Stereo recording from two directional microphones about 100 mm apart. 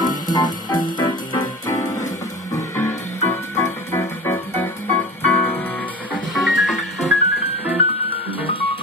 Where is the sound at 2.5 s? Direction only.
25° left (ahead or behind).